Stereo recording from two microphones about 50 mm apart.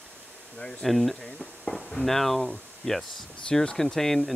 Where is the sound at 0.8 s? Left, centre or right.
Centre.